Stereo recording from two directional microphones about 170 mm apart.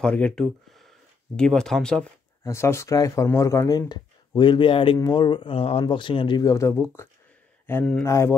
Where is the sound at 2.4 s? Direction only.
15° left (ahead or behind).